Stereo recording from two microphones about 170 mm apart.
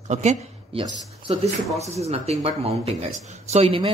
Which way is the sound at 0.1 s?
40° right (ahead or behind).